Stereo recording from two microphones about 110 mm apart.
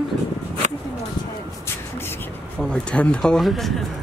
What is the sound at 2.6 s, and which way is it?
Speech, 10° left (ahead or behind).